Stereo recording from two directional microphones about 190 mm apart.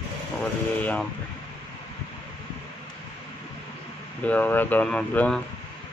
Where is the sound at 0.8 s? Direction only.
5° left (ahead or behind).